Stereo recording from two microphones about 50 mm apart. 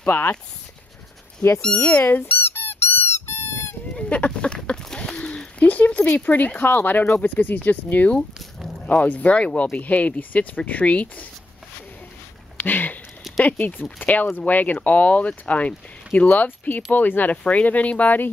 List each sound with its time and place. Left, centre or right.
0.0 s speech: left
1.6 s speech: left
2.0 s squeak: left
4.1 s a sound: left
5.6 s speech: left
12.5 s a sound: left
13.4 s speech: left